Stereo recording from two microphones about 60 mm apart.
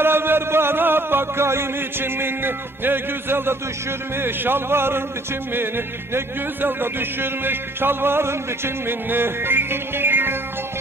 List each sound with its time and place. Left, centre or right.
0.0 s music: right